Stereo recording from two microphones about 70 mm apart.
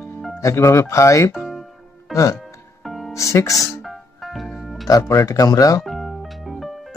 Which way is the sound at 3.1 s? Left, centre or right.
Left.